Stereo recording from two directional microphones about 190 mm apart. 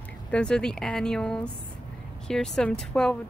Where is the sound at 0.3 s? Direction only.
5° left (ahead or behind).